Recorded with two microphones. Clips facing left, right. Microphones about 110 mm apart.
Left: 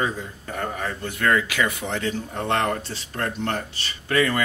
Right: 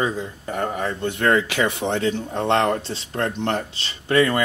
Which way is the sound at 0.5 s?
30° right (ahead or behind).